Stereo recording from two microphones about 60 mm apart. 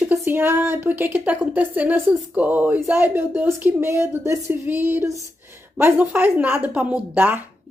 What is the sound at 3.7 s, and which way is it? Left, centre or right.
Speech, right.